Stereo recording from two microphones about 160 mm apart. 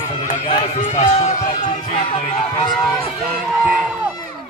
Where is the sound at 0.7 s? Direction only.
50° left (ahead or behind); by 2.7 s 35° left (ahead or behind).